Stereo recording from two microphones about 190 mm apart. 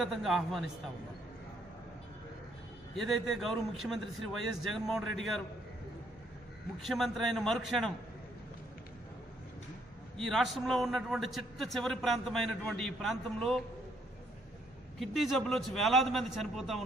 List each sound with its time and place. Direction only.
0.0 s a man's voice: centre (ahead or behind)
3.0 s a man's voice: centre (ahead or behind)
6.9 s a man's voice: centre (ahead or behind)
10.1 s a man's voice: centre (ahead or behind)
15.0 s a man's voice: centre (ahead or behind)